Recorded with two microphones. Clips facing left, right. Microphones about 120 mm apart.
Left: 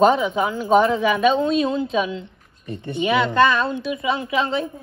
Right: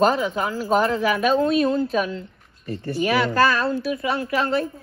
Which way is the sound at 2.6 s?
20° left (ahead or behind).